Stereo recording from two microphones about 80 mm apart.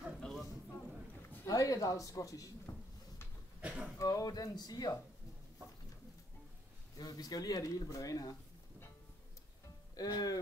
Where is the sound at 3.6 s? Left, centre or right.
Centre.